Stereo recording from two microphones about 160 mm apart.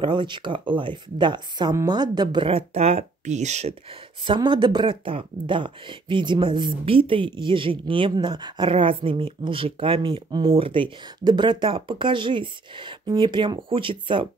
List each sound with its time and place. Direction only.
0.0 s speech: 30° right (ahead or behind); by 3.7 s 45° right (ahead or behind)
4.2 s speech: 30° right (ahead or behind)